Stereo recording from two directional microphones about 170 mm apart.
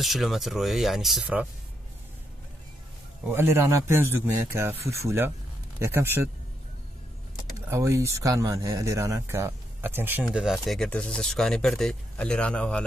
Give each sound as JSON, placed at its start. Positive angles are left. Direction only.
{"t": 0.0, "sound": "speech", "side_deg": 0}
{"t": 3.3, "sound": "speech", "side_deg": -15}
{"t": 7.5, "sound": "speech", "side_deg": -15}
{"t": 10.2, "sound": "speech", "side_deg": 0}